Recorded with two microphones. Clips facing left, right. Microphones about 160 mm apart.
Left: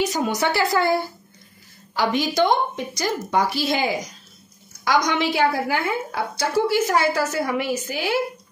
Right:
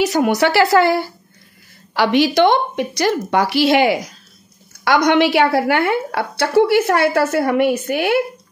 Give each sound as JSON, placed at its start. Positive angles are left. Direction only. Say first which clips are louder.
{"t": 0.0, "sound": "a woman's voice", "louder": "right 7 dB", "side_deg": -70}